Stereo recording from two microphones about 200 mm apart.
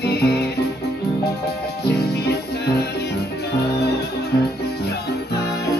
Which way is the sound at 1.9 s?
55° left (ahead or behind).